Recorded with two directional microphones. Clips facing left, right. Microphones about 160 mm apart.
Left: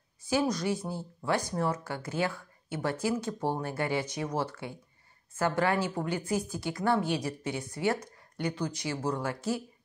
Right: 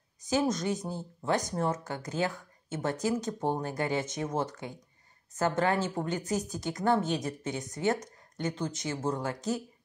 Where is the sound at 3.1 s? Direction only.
40° right (ahead or behind).